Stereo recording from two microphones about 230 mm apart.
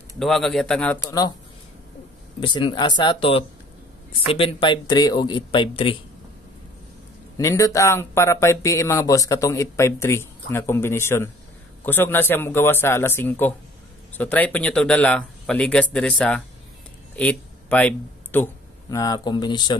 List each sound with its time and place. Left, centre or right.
0.2 s speech: centre
2.4 s speech: left
7.3 s a man's voice: centre